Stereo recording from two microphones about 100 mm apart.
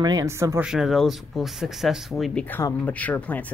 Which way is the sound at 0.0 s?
40° right (ahead or behind).